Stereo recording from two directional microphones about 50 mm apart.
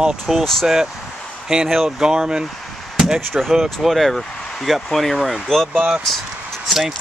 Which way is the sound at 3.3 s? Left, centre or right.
Centre.